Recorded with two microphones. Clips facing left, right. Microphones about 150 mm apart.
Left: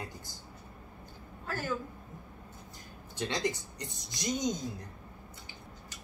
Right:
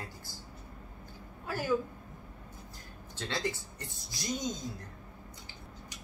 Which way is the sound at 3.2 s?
15° left (ahead or behind).